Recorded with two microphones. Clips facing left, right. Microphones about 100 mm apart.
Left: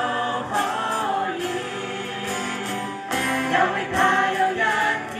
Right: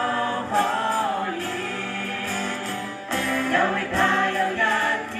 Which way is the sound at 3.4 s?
25° left (ahead or behind).